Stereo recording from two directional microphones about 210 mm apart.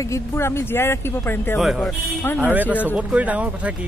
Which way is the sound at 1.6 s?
Centre (ahead or behind).